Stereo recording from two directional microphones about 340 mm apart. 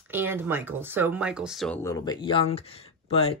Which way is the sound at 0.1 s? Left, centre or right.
Centre.